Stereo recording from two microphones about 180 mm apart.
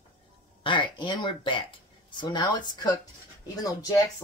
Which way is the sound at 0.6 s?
25° left (ahead or behind).